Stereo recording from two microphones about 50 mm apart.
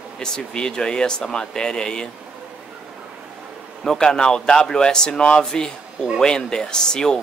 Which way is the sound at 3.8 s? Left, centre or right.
Centre.